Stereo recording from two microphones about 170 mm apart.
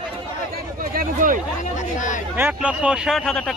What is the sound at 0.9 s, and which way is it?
Speech, 50° right (ahead or behind).